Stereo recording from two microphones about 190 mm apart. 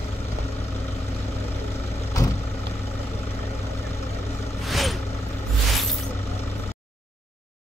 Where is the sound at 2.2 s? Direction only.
15° left (ahead or behind).